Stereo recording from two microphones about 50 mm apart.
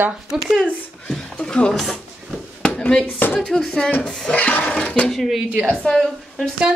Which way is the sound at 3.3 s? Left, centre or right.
Centre.